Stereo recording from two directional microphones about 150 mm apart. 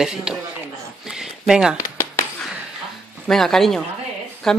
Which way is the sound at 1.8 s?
15° left (ahead or behind).